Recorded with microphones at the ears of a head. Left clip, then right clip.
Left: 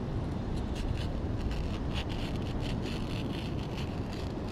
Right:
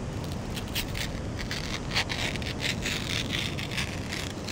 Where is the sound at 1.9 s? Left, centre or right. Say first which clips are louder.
Right 13 dB; right.